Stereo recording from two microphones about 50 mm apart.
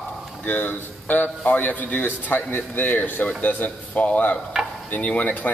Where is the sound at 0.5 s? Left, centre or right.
Left.